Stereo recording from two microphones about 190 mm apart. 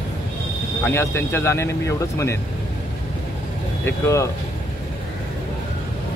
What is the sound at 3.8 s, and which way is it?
Speech, 15° left (ahead or behind).